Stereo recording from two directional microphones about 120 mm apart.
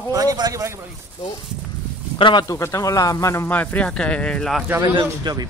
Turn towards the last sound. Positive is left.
turn(degrees=-35)  # may be behind; listen again after turning